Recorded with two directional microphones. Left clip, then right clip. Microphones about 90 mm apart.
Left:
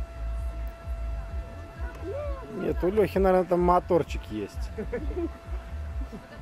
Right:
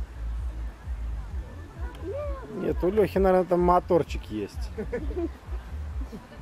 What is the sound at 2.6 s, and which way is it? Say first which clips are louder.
Speech: right 1 dB; centre (ahead or behind).